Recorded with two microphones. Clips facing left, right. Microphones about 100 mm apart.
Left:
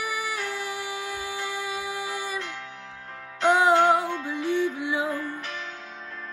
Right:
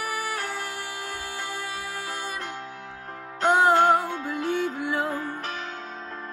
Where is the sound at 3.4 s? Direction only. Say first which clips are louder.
Even; 45° right (ahead or behind).